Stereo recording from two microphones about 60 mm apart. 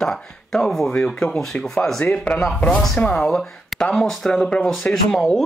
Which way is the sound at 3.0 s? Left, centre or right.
Left.